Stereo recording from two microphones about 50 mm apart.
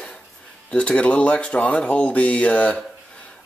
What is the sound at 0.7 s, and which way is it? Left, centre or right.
Speech, left.